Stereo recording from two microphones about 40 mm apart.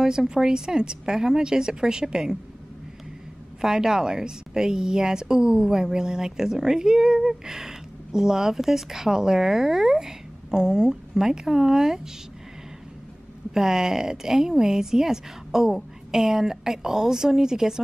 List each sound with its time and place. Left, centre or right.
0.0 s speech: centre
3.6 s speech: centre
13.5 s speech: centre